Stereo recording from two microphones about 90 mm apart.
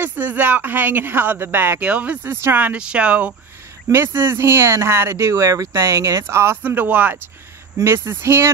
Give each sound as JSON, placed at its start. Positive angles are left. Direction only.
{"t": 0.0, "sound": "speech", "side_deg": -20}
{"t": 2.2, "sound": "speech", "side_deg": -25}
{"t": 3.9, "sound": "speech", "side_deg": -25}